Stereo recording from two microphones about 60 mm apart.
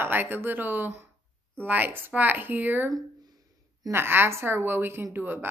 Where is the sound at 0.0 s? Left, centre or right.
Right.